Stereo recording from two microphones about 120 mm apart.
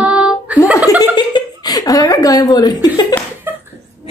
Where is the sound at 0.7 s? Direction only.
30° left (ahead or behind).